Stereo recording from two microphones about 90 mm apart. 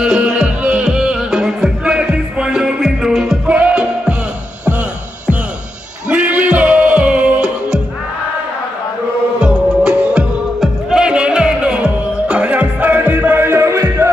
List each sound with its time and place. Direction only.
0.0 s music: 10° right (ahead or behind)
3.4 s music: 15° right (ahead or behind)
6.0 s music: 15° right (ahead or behind)
9.4 s music: 10° right (ahead or behind); by 14.1 s 30° right (ahead or behind)